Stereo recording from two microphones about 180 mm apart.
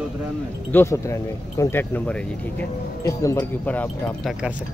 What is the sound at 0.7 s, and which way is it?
Speech, 15° left (ahead or behind).